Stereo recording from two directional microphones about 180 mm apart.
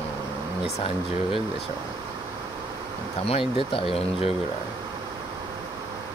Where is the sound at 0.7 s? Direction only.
35° left (ahead or behind).